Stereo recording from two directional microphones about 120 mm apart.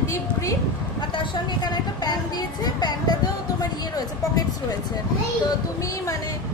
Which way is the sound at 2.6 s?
35° left (ahead or behind).